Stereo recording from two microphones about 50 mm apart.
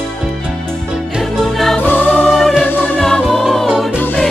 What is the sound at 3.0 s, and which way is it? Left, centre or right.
Music, centre.